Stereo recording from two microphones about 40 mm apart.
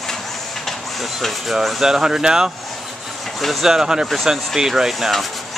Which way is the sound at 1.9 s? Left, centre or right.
Centre.